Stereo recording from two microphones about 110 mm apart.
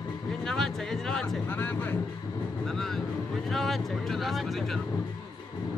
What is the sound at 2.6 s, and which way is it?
Speech, 5° left (ahead or behind).